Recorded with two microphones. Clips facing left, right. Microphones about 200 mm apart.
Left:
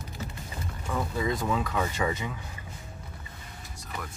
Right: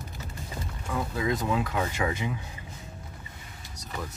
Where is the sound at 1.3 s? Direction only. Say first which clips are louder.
Right 3 dB; 15° right (ahead or behind).